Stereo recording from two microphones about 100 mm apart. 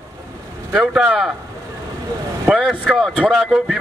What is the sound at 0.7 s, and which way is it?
Speech, 5° right (ahead or behind).